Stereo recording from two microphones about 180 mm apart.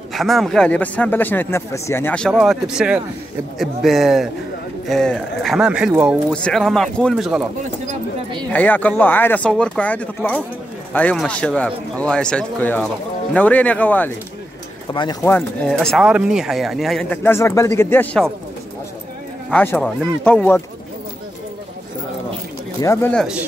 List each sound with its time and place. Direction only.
0.1 s speech: centre (ahead or behind)
8.5 s speech: 10° left (ahead or behind)
14.9 s speech: 20° left (ahead or behind)
15.2 s speech: 10° left (ahead or behind)
19.5 s speech: 10° left (ahead or behind)
22.8 s speech: 15° left (ahead or behind)
23.1 s speech: 5° right (ahead or behind)